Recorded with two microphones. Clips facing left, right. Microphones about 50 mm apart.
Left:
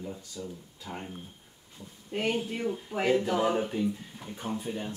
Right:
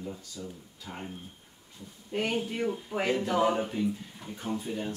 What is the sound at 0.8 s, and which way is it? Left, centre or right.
Speech, centre.